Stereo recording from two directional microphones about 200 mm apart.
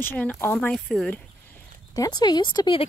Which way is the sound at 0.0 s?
10° left (ahead or behind).